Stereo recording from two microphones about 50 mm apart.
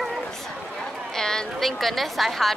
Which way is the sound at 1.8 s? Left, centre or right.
Centre.